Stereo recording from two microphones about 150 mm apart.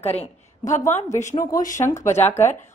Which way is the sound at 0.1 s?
45° left (ahead or behind).